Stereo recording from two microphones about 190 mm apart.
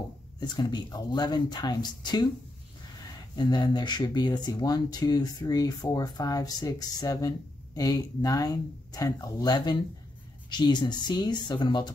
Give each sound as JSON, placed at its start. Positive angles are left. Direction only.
{"t": 0.4, "sound": "speech", "side_deg": 20}
{"t": 3.3, "sound": "speech", "side_deg": 20}